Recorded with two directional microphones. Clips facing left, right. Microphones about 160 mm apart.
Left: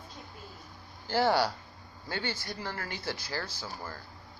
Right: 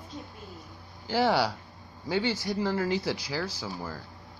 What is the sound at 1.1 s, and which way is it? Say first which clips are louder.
Speech: right 1 dB; 5° right (ahead or behind).